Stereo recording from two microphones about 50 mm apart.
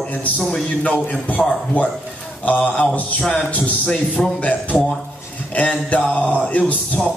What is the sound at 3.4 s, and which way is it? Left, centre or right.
A man's voice, left.